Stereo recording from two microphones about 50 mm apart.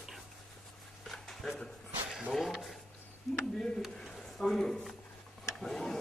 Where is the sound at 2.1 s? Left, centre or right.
Centre.